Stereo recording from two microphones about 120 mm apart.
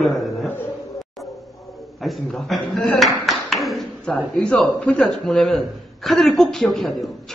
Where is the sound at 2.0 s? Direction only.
Centre (ahead or behind).